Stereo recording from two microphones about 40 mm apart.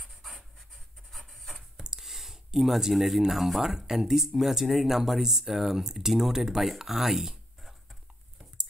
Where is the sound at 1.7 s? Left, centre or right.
Centre.